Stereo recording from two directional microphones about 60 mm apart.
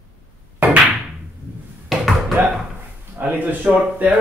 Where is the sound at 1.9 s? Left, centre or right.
Centre.